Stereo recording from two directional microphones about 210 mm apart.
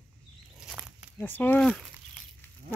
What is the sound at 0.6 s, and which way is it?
Walk, 5° right (ahead or behind).